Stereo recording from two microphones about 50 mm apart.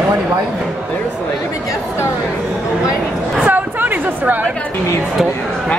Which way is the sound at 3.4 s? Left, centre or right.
Right.